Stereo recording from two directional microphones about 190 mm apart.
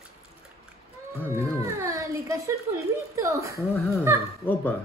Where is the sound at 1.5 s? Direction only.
15° right (ahead or behind).